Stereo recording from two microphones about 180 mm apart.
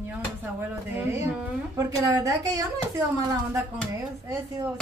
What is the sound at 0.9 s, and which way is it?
A woman's voice, 15° right (ahead or behind).